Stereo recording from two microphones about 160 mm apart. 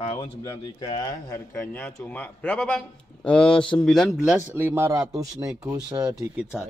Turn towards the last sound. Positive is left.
turn(degrees=-5)  # may be behind; listen again after turning